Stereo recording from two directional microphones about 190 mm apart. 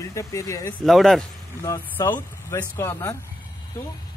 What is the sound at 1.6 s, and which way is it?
Speech, 20° left (ahead or behind).